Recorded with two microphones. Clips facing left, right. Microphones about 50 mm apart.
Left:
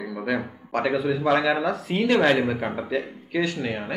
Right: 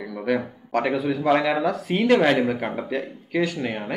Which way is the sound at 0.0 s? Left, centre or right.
Centre.